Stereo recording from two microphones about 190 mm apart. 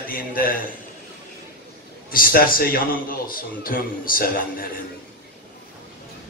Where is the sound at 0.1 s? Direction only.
50° left (ahead or behind).